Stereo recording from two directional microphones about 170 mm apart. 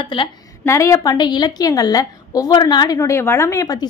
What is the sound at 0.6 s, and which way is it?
A woman's voice, 15° left (ahead or behind).